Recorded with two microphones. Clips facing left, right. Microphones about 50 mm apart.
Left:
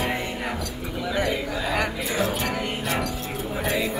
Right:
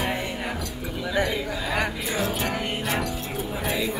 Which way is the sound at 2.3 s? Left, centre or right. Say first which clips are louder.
Even; centre.